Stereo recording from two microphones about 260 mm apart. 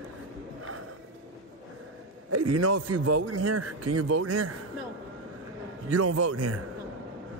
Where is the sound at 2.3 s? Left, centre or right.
Right.